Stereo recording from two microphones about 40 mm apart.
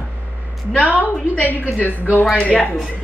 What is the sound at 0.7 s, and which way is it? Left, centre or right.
Speech, left.